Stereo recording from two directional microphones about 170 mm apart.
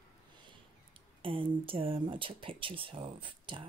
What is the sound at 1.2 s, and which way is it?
Speech, 30° right (ahead or behind).